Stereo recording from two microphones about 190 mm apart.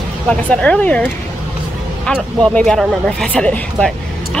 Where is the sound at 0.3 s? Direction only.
5° left (ahead or behind).